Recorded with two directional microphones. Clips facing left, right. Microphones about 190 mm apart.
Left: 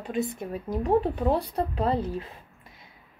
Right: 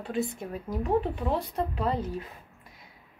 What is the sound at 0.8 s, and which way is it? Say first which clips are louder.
A woman's voice: left 4 dB; 40° left (ahead or behind).